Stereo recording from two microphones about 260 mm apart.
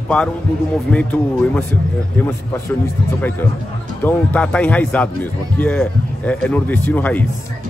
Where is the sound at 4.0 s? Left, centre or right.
Centre.